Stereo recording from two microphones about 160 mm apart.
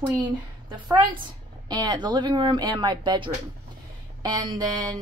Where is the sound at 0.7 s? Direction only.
25° right (ahead or behind).